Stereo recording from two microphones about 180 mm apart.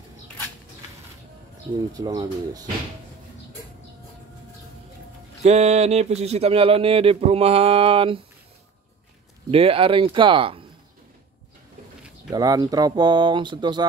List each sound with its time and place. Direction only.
2.0 s speech: 20° right (ahead or behind)
5.4 s speech: 40° right (ahead or behind)
9.5 s speech: 30° right (ahead or behind)
12.3 s speech: 20° right (ahead or behind)